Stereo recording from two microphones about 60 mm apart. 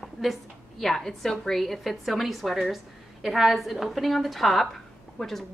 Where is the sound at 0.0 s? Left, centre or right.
Centre.